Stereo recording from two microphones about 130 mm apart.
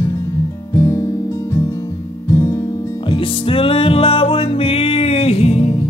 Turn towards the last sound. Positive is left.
turn(degrees=50)  # may be behind; listen again after turning